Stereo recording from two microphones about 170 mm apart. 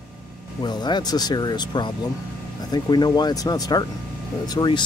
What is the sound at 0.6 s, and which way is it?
Speech, 25° left (ahead or behind).